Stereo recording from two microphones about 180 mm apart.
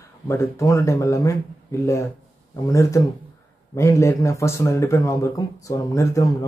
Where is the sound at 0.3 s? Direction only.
15° left (ahead or behind).